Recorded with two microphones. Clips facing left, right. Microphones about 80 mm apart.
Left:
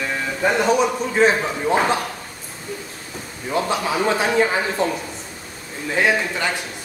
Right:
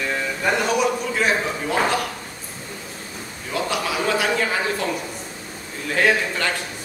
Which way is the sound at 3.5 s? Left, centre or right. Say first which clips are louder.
Left 3 dB; left.